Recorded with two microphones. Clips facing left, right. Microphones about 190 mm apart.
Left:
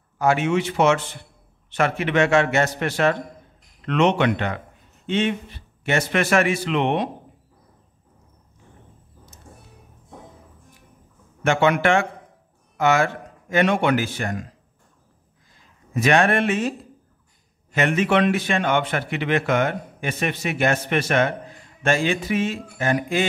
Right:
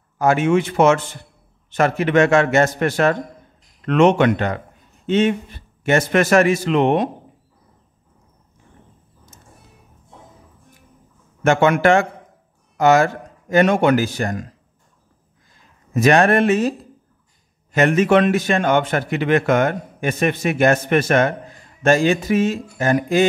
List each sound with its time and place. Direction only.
0.2 s speech: 50° right (ahead or behind)
11.4 s speech: 45° right (ahead or behind)
15.9 s speech: 40° right (ahead or behind)
17.7 s speech: 45° right (ahead or behind)